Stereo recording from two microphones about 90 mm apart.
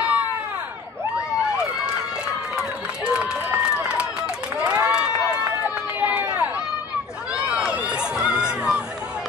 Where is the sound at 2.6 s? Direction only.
10° right (ahead or behind).